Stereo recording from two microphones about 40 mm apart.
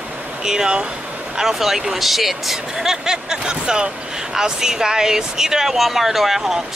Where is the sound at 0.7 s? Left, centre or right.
Right.